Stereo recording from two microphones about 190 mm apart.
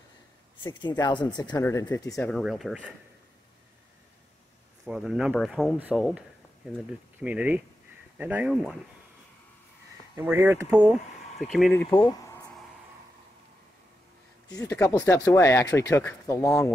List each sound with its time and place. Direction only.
0.6 s speech: 25° left (ahead or behind)
2.3 s speech: centre (ahead or behind)
4.8 s speech: 5° right (ahead or behind)
5.8 s speech: 10° right (ahead or behind)
7.2 s speech: 10° right (ahead or behind)
10.1 s speech: 10° right (ahead or behind)
11.3 s speech: centre (ahead or behind)
11.9 s speech: 20° left (ahead or behind)
14.6 s speech: 10° left (ahead or behind)